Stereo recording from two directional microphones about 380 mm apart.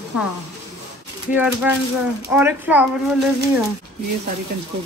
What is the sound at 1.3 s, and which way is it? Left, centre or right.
Speech, centre.